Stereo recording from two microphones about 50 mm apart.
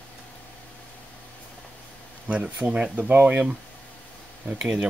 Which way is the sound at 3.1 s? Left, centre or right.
Right.